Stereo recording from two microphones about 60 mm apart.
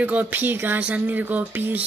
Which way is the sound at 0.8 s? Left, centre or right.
Right.